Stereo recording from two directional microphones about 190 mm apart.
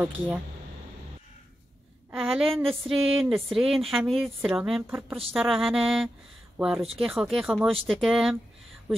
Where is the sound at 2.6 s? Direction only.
30° right (ahead or behind).